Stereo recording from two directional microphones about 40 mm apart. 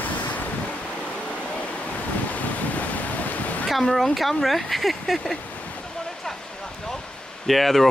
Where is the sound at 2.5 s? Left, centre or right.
Left.